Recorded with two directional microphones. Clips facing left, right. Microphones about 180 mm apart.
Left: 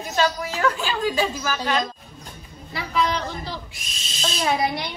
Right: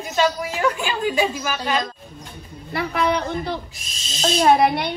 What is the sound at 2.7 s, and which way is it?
A child's voice, 60° right (ahead or behind).